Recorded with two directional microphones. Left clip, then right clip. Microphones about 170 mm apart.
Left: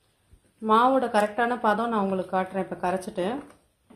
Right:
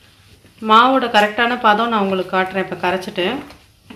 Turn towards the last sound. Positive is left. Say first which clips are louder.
# right 8 dB
turn(degrees=55)  # may be behind; listen again after turning